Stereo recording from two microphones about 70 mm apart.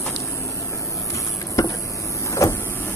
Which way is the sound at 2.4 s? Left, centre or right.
Left.